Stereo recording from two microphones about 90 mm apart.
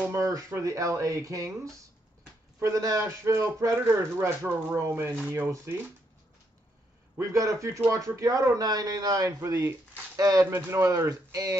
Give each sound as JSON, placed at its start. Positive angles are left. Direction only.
{"t": 0.1, "sound": "speech", "side_deg": -35}
{"t": 2.6, "sound": "speech", "side_deg": -35}
{"t": 7.2, "sound": "speech", "side_deg": -35}
{"t": 10.4, "sound": "speech", "side_deg": -30}